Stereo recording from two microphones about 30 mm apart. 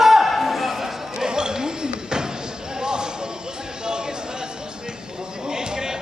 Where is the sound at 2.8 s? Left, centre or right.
Right.